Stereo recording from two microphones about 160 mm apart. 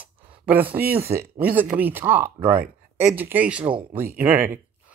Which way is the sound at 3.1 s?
10° right (ahead or behind).